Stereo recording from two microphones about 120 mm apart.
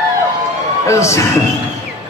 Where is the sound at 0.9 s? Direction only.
25° left (ahead or behind).